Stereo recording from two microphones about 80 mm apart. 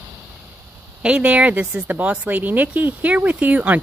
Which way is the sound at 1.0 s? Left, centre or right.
Centre.